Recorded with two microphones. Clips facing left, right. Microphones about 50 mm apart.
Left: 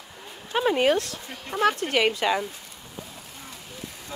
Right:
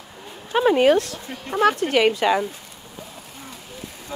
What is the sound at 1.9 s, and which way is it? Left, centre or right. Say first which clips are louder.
Speech: right 5 dB; right.